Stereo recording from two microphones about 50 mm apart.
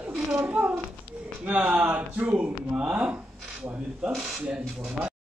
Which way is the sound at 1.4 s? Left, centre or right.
Right.